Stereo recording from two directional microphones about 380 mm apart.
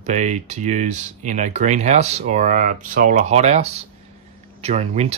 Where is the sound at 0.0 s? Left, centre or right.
Centre.